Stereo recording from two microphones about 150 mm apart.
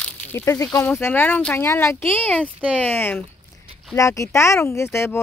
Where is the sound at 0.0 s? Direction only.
15° left (ahead or behind).